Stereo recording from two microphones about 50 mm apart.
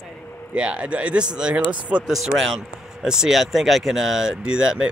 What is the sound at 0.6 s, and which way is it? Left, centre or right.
Speech, right.